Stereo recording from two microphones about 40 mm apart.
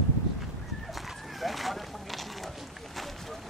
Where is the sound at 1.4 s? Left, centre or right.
Centre.